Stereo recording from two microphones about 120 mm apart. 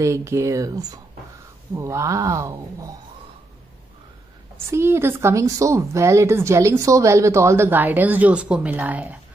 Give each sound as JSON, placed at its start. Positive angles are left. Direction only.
{"t": 0.0, "sound": "speech", "side_deg": -25}
{"t": 4.6, "sound": "speech", "side_deg": -20}